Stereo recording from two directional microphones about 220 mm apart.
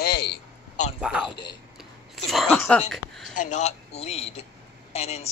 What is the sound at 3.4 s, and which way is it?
A man's voice, 30° left (ahead or behind).